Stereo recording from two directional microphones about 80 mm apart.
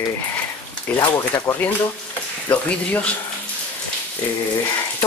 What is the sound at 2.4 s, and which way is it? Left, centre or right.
Speech, left.